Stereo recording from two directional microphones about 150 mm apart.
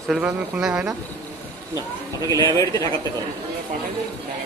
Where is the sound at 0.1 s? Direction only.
5° right (ahead or behind).